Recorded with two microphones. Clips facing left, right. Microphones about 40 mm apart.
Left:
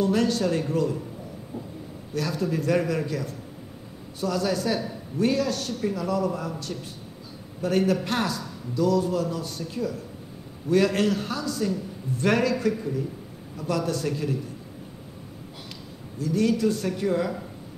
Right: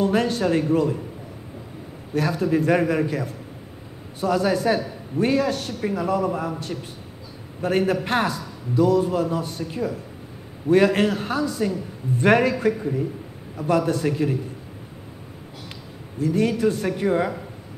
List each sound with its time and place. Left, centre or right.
0.0 s a man's voice: right
2.1 s a man's voice: right
16.2 s a man's voice: right